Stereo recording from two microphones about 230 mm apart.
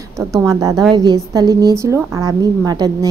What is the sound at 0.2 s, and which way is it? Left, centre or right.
Speech, centre.